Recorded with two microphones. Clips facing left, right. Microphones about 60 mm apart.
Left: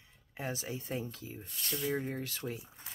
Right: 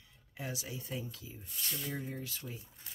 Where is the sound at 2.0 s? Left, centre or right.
Left.